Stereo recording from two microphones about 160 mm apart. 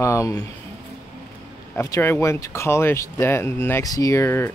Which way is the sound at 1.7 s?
20° left (ahead or behind).